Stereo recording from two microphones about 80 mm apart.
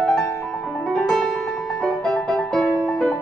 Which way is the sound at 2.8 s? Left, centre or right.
Centre.